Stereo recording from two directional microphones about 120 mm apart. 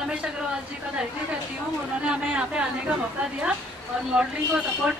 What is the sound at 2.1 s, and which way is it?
Speech, 10° right (ahead or behind).